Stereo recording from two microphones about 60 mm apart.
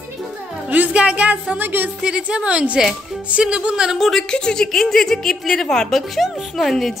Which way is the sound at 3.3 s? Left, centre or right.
Centre.